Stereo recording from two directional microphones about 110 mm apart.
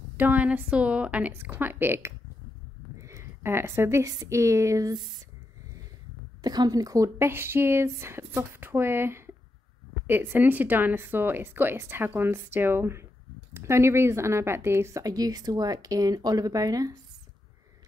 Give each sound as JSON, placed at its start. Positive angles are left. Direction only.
{"t": 0.2, "sound": "a woman's voice", "side_deg": -15}
{"t": 6.4, "sound": "speech", "side_deg": -40}